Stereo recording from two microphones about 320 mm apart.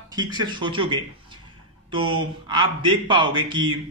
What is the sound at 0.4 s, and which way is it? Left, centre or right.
A man's voice, centre.